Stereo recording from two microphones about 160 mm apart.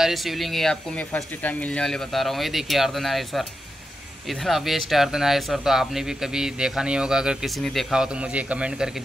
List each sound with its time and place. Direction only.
0.0 s speech: centre (ahead or behind)